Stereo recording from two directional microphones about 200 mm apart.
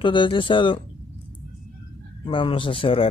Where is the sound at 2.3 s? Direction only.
25° left (ahead or behind).